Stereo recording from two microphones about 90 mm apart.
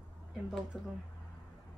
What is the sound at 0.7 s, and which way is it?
Speech, 5° left (ahead or behind).